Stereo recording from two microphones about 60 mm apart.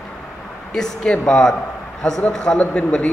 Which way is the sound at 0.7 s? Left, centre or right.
Centre.